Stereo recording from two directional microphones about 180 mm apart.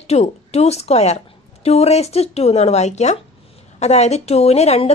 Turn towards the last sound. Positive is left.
turn(degrees=35)  # may be behind; listen again after turning